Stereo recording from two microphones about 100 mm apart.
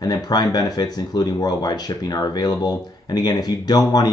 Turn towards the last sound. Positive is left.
turn(degrees=40)  # may be behind; listen again after turning